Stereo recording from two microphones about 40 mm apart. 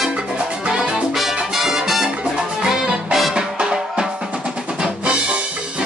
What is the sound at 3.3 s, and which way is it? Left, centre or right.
Music, centre.